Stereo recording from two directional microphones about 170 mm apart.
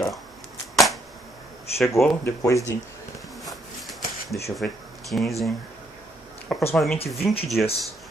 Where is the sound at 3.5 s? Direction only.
Centre (ahead or behind).